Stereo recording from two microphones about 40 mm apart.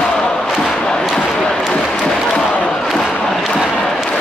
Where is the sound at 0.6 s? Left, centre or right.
Centre.